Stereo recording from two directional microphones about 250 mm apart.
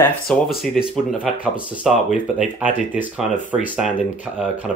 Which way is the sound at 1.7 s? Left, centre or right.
Centre.